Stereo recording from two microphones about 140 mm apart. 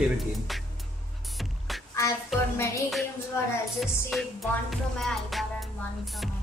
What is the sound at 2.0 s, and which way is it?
Music, 20° left (ahead or behind).